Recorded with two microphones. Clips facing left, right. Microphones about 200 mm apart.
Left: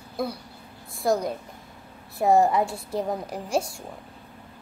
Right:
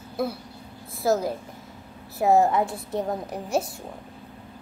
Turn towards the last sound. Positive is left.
turn(degrees=0)  # may be behind; listen again after turning